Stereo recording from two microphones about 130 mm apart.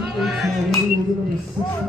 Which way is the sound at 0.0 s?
Centre (ahead or behind).